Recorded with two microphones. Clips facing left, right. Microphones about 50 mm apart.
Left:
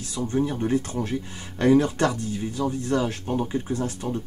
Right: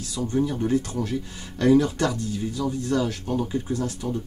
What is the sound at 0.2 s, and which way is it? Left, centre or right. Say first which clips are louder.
Speech: even; left.